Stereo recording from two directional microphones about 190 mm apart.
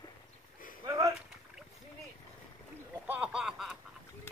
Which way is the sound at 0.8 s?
20° right (ahead or behind).